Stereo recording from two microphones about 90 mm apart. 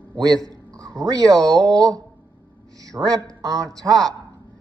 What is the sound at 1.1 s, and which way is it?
A man's voice, 45° right (ahead or behind).